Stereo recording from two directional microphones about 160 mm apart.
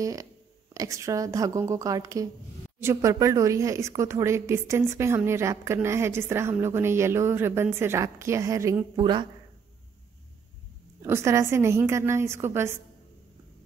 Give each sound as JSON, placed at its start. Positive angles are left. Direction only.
{"t": 0.0, "sound": "a woman's voice", "side_deg": -20}
{"t": 11.0, "sound": "a woman's voice", "side_deg": -15}